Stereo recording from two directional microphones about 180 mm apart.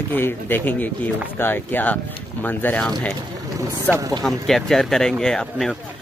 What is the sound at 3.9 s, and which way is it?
Speech, 20° right (ahead or behind).